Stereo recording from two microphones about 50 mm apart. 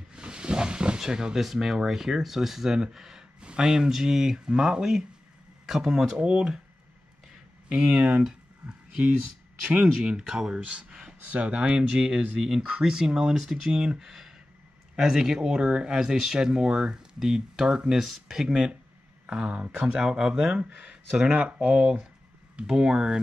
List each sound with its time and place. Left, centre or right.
0.1 s a sound: centre
1.4 s speech: centre
6.1 s speech: centre
7.7 s speech: centre
8.2 s a sound: centre
9.9 s speech: centre
13.7 s speech: centre